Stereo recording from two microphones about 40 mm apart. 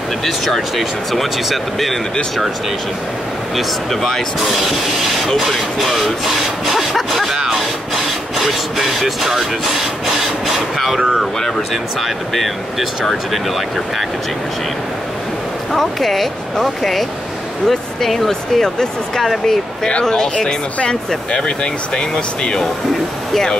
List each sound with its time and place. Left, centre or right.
0.6 s speech: centre
3.5 s speech: centre
5.3 s speech: centre
8.5 s music: centre
10.4 s speech: centre
15.7 s speech: centre; by 22.6 s left